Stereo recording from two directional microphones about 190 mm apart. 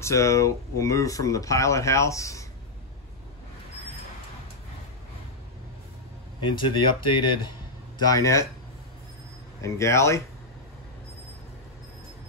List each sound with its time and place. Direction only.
0.0 s speech: 15° left (ahead or behind)
6.5 s speech: 25° left (ahead or behind)
9.6 s speech: 15° left (ahead or behind)